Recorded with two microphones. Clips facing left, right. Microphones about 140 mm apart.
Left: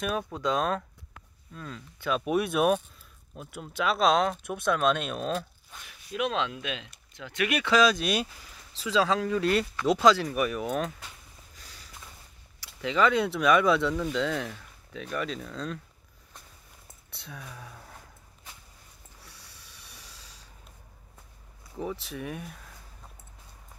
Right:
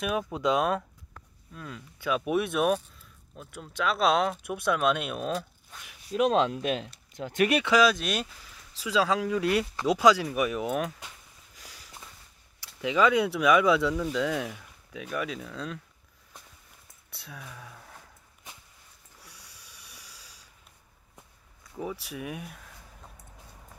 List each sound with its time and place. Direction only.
0.0 s speech: 10° right (ahead or behind)
6.1 s speech: 40° right (ahead or behind)
7.6 s speech: 10° right (ahead or behind)
8.7 s speech: 5° right (ahead or behind)
11.5 s sniff: 10° right (ahead or behind)
12.5 s speech: 15° right (ahead or behind)
17.1 s speech: 5° right (ahead or behind)
19.2 s a sound: 15° right (ahead or behind)
21.7 s speech: 10° right (ahead or behind)